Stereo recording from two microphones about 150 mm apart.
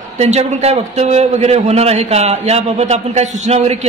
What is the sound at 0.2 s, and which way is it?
A man's voice, 45° right (ahead or behind).